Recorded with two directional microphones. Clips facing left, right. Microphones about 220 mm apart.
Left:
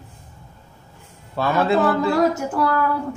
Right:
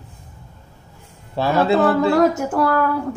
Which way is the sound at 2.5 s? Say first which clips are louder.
Right 3 dB; 50° right (ahead or behind).